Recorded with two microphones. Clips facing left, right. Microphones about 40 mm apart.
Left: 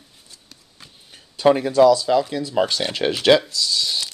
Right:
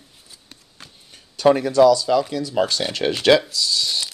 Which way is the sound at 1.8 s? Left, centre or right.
Centre.